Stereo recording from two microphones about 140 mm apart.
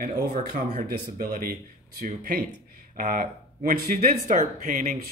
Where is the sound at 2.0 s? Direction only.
70° right (ahead or behind).